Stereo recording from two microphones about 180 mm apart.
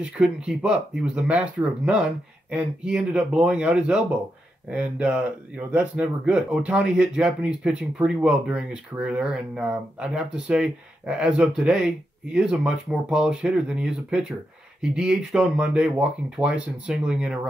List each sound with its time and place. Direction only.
0.0 s speech: 5° right (ahead or behind)